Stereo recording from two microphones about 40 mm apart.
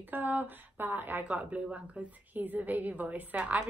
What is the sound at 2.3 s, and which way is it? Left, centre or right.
A woman's voice, right.